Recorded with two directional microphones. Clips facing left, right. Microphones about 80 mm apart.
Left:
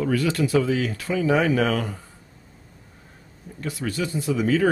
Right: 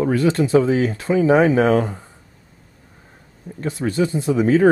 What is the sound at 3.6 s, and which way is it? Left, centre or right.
Speech, right.